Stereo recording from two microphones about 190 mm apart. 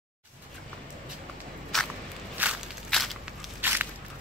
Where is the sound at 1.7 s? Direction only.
Centre (ahead or behind).